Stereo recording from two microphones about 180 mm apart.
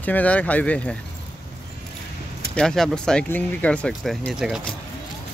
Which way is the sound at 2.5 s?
5° left (ahead or behind).